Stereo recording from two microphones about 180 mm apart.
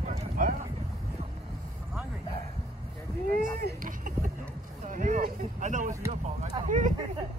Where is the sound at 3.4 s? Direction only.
50° right (ahead or behind).